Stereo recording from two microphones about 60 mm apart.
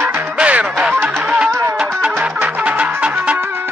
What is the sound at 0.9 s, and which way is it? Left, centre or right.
Music, right.